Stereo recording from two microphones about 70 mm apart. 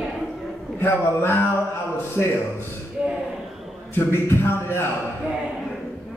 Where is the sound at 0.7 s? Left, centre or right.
Left.